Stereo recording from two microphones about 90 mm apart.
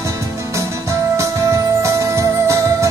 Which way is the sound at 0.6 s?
35° right (ahead or behind).